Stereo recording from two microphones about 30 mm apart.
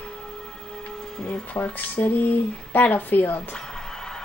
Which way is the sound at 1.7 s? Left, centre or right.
Left.